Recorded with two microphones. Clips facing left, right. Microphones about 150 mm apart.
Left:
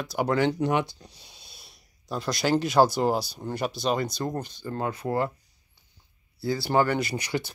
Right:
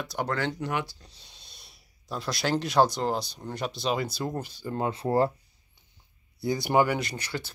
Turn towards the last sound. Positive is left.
turn(degrees=15)  # may be behind; listen again after turning